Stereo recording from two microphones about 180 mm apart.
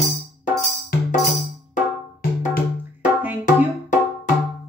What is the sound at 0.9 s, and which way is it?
Music, 55° left (ahead or behind).